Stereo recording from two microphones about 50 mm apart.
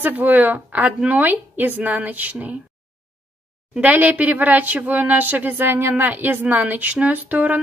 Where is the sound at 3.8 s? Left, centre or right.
Right.